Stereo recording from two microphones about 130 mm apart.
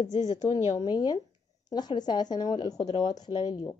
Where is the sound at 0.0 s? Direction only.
60° left (ahead or behind).